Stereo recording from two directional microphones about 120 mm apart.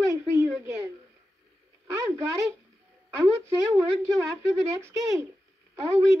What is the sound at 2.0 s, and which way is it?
Speech, 20° right (ahead or behind).